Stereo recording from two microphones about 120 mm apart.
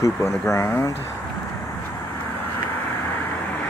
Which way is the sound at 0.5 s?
25° left (ahead or behind).